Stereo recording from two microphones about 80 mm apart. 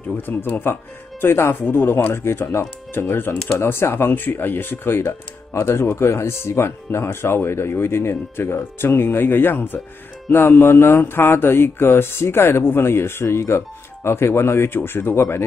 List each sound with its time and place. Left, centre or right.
0.2 s speech: left